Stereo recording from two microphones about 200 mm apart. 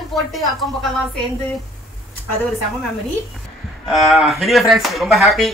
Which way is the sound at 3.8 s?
Centre (ahead or behind).